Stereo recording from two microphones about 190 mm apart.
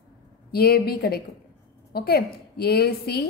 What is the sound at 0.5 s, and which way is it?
A woman's voice, 55° left (ahead or behind).